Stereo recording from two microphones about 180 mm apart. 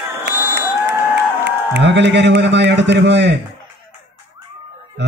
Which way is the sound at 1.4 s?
75° right (ahead or behind).